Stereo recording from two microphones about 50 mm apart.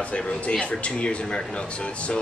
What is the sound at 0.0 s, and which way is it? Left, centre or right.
Speech, left.